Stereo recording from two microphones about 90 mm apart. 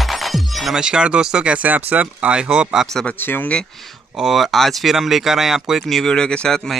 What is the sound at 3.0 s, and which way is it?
Speech, 20° left (ahead or behind).